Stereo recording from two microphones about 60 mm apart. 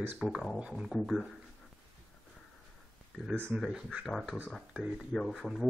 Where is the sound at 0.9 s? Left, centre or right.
Centre.